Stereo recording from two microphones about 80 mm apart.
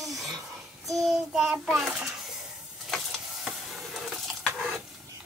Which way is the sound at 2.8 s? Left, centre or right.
Centre.